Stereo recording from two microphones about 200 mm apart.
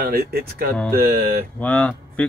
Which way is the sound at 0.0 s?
50° right (ahead or behind).